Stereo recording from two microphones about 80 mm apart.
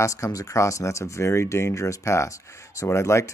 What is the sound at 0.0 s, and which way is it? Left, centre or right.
Speech, left.